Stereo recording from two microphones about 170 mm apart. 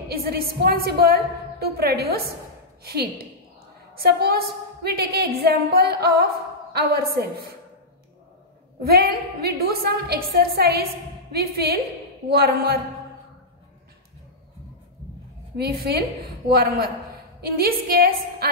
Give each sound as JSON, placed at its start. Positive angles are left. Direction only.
{"t": 0.1, "sound": "a woman's voice", "side_deg": -65}
{"t": 8.8, "sound": "a woman's voice", "side_deg": -65}
{"t": 15.5, "sound": "a woman's voice", "side_deg": -65}